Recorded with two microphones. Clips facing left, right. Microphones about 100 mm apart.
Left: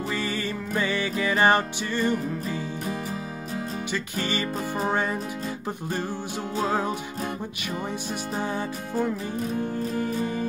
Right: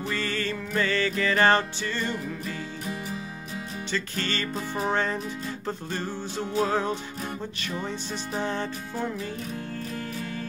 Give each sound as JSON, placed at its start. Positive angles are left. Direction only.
{"t": 0.1, "sound": "music", "side_deg": 15}
{"t": 3.9, "sound": "music", "side_deg": 15}